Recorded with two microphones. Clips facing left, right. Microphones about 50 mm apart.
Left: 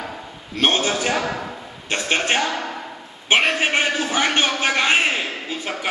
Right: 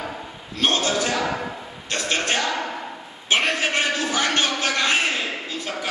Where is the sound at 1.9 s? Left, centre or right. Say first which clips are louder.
Left 3 dB; left.